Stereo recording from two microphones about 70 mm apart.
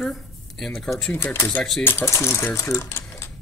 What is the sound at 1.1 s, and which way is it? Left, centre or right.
Speech, left.